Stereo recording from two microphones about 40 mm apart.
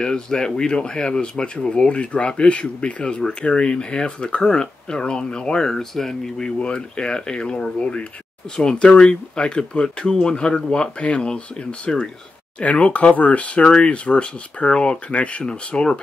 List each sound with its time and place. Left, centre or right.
0.0 s speech: centre; by 15.4 s left
15.4 s speech: left